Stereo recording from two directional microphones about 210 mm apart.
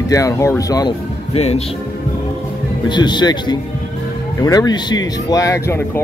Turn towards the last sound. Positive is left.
turn(degrees=10)  # may be behind; listen again after turning